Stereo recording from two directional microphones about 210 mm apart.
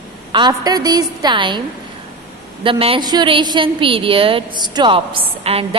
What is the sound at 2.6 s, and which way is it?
A woman's voice, 25° right (ahead or behind).